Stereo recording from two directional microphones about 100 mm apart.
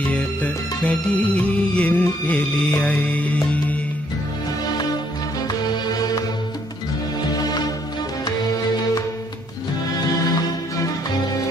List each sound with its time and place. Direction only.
0.0 s music: 15° left (ahead or behind)
7.3 s music: 40° left (ahead or behind)